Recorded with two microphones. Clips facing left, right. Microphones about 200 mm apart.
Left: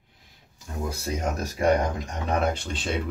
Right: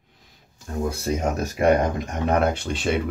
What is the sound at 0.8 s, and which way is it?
Speech, 55° right (ahead or behind).